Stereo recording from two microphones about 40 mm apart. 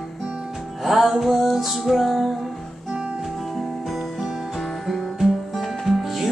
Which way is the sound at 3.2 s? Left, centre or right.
Centre.